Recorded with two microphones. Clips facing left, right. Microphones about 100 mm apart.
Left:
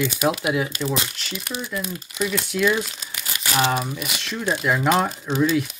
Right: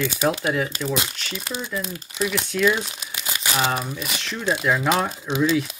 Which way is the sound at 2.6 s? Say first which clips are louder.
Even; centre (ahead or behind).